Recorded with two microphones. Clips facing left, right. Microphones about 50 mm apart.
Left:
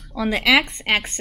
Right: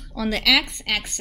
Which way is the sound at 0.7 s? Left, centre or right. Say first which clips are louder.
Left 5 dB; left.